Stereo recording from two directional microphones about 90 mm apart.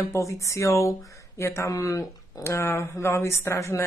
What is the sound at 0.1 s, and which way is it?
Mantra, 35° left (ahead or behind).